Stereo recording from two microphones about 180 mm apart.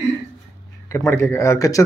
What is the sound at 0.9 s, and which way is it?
Mantra, 15° left (ahead or behind).